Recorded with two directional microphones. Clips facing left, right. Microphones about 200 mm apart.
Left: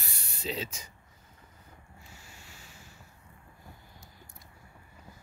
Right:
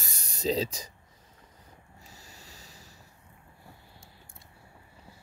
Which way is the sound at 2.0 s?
40° right (ahead or behind).